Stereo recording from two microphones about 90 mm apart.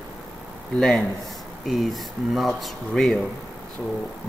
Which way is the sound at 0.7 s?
5° left (ahead or behind).